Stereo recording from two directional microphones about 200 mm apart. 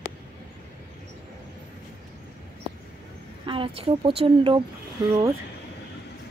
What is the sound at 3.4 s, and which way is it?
A woman's voice, 25° right (ahead or behind).